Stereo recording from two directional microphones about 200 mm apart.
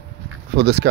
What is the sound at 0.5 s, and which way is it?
Speech, 55° right (ahead or behind).